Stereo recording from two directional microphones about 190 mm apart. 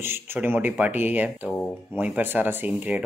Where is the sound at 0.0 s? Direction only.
10° right (ahead or behind).